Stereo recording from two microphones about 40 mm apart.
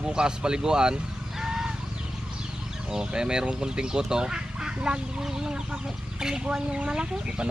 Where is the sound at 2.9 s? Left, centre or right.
Centre.